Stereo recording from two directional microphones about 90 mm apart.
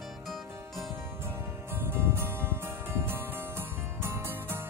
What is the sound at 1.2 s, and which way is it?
Music, 25° right (ahead or behind).